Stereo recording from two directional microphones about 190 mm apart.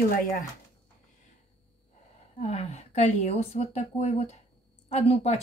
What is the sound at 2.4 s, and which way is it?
Speech, 35° left (ahead or behind).